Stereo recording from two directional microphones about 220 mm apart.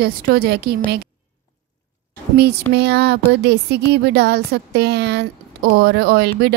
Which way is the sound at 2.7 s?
50° right (ahead or behind).